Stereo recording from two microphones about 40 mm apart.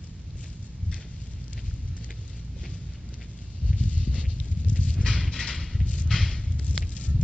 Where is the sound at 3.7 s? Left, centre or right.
Left.